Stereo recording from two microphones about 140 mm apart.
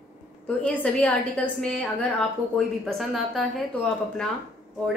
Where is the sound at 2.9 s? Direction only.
Centre (ahead or behind).